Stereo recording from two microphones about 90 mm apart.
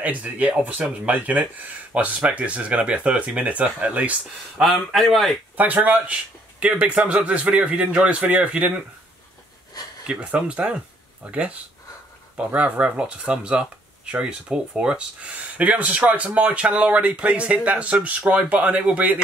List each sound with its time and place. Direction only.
0.0 s speech: 15° right (ahead or behind)
4.6 s a man's voice: centre (ahead or behind)
5.6 s speech: 20° right (ahead or behind)
10.0 s speech: 15° right (ahead or behind)